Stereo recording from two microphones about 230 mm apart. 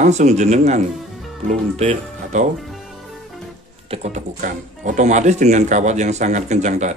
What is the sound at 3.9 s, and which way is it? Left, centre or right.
Speech, right.